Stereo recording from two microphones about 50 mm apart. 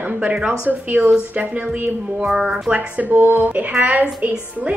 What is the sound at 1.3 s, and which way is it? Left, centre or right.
A woman's voice, right.